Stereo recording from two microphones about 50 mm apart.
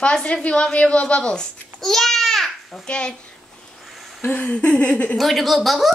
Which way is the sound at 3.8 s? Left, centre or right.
Centre.